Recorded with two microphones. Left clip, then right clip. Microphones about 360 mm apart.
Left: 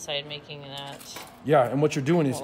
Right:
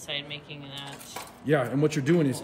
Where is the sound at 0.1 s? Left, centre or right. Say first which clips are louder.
Left 2 dB; centre.